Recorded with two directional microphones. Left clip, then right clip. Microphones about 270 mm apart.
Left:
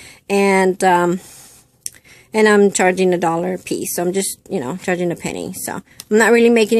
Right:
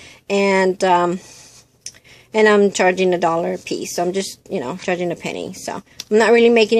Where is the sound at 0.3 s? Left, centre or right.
Centre.